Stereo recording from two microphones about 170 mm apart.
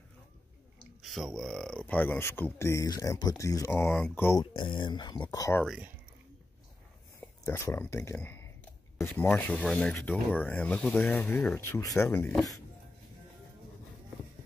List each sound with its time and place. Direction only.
1.0 s speech: centre (ahead or behind)
4.4 s speech: 25° left (ahead or behind)
5.7 s speech: 10° right (ahead or behind)
7.4 s speech: 15° left (ahead or behind)